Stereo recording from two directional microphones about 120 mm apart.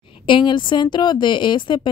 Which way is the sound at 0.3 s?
40° left (ahead or behind).